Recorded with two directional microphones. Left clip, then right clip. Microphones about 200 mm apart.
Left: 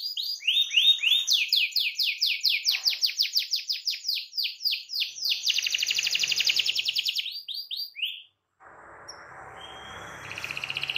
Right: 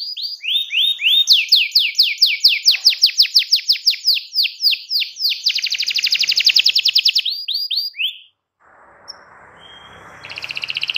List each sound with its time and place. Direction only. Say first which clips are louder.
0.7 s chirp tone: right 6 dB; 5° left (ahead or behind)
1.2 s bird: right 11 dB; 25° right (ahead or behind)
10.2 s bird: right 9 dB; 20° right (ahead or behind)